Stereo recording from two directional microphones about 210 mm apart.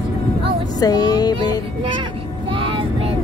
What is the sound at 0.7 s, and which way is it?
Speech, 20° left (ahead or behind).